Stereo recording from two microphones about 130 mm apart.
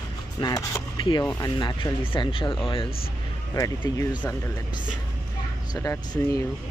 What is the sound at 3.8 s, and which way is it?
Speech, 25° left (ahead or behind).